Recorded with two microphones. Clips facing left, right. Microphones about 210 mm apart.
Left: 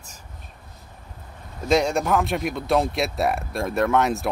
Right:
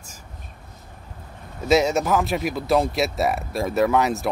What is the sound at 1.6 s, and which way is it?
Speech, 5° right (ahead or behind).